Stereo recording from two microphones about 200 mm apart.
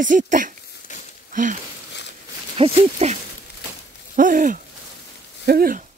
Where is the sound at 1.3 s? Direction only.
40° right (ahead or behind).